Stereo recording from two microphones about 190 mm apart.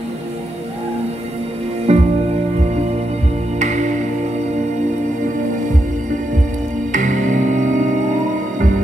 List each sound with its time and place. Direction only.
1.9 s music: 35° right (ahead or behind)
3.5 s music: 40° right (ahead or behind)
6.9 s music: 40° right (ahead or behind)